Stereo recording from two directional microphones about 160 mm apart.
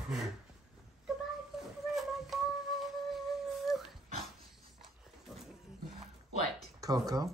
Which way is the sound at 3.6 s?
Centre (ahead or behind).